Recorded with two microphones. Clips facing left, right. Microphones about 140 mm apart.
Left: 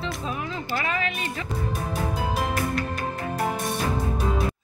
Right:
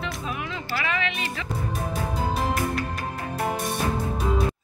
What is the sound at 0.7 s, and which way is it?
Music, 40° left (ahead or behind).